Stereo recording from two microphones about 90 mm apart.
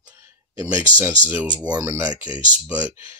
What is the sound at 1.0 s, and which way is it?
Speech, 20° right (ahead or behind).